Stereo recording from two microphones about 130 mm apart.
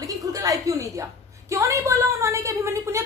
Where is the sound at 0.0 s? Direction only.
25° right (ahead or behind).